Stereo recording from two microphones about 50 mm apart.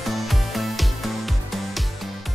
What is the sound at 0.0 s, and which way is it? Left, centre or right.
Music, centre.